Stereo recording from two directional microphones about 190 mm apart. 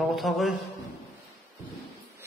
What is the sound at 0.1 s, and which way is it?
Speech, centre (ahead or behind).